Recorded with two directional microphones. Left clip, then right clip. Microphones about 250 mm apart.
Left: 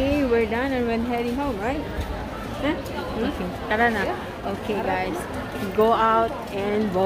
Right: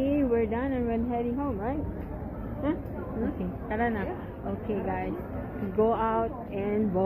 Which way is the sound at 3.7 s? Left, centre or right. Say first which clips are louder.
Left 9 dB; centre.